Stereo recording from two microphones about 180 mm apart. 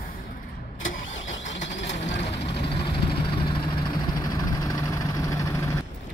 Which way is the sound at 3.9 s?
20° left (ahead or behind).